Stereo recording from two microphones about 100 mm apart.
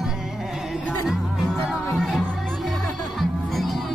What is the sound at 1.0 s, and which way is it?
Music, 5° right (ahead or behind).